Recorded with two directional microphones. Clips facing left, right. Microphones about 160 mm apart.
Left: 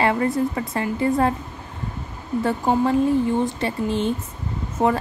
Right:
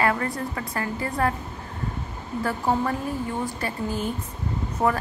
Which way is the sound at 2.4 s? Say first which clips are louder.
Left 4 dB; 25° left (ahead or behind).